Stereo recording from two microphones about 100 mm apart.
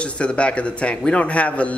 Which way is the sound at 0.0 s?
10° left (ahead or behind).